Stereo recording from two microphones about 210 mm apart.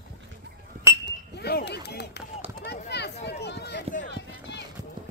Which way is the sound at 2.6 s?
50° left (ahead or behind).